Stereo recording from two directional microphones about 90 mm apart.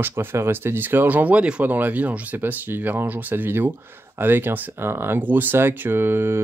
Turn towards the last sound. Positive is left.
turn(degrees=-25)  # may be behind; listen again after turning